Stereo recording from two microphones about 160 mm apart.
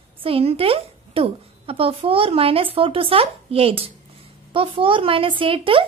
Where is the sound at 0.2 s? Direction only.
35° right (ahead or behind).